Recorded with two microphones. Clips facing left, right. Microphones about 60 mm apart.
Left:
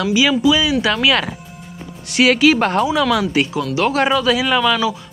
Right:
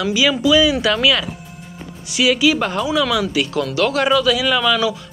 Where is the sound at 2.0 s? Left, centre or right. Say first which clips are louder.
Left 3 dB; left.